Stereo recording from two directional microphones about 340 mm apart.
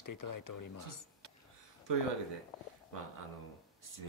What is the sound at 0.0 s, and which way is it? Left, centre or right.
Speech, left.